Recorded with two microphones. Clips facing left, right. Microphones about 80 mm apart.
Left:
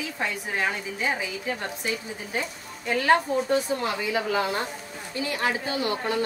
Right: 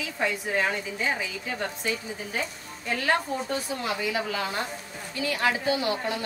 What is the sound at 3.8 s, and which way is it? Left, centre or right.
Speech, left.